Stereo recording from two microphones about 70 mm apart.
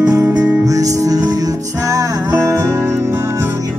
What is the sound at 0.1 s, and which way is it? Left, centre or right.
Music, right.